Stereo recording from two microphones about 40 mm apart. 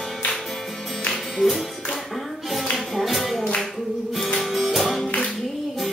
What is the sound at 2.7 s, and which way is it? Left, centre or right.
Music, centre.